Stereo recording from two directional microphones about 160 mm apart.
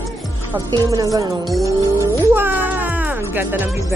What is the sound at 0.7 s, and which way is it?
Speech, 20° right (ahead or behind).